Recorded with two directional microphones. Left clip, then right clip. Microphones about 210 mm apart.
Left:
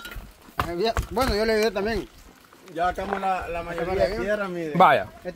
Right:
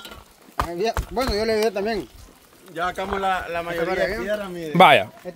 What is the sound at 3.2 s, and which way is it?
A man's voice, 40° right (ahead or behind).